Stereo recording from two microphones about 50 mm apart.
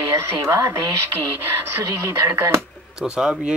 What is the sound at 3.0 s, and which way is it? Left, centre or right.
Speech, centre.